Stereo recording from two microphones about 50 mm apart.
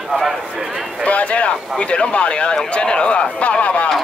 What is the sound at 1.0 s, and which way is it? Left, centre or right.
Speech, left.